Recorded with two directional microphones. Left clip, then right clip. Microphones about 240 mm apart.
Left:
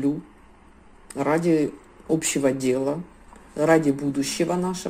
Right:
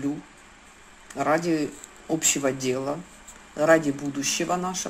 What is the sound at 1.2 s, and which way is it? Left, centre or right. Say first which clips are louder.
Speech: left 2 dB; left.